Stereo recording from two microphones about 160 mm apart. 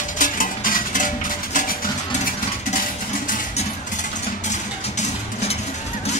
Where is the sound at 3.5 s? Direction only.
50° left (ahead or behind).